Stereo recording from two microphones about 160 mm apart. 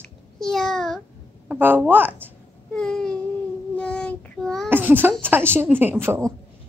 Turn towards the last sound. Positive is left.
turn(degrees=-15)  # may be behind; listen again after turning